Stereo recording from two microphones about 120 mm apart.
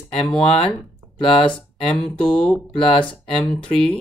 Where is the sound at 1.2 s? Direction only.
45° left (ahead or behind).